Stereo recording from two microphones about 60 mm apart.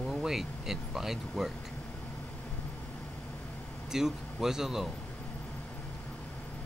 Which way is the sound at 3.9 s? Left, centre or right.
Centre.